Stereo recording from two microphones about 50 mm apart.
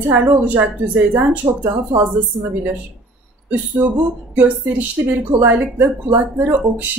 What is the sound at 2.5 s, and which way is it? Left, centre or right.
Speech, right.